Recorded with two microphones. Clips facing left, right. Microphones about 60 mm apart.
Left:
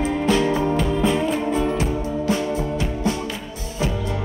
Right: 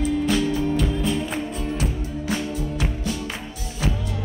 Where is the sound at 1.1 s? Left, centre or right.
Left.